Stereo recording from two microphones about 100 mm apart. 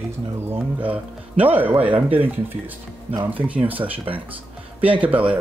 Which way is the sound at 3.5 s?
15° right (ahead or behind).